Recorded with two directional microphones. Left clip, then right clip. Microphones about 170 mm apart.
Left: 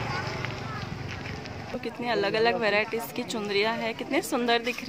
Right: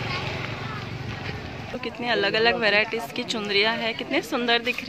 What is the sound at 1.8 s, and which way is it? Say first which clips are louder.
Speech: right 4 dB; 10° left (ahead or behind).